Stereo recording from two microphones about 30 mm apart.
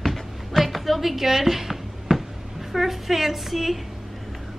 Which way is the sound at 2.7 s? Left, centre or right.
Centre.